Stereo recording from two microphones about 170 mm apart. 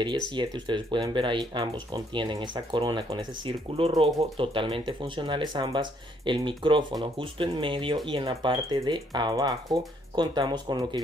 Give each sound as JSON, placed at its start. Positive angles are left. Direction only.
{"t": 0.0, "sound": "speech", "side_deg": -25}